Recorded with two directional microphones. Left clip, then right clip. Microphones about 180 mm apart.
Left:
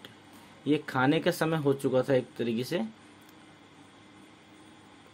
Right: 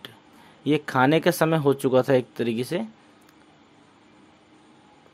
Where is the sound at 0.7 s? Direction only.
35° right (ahead or behind).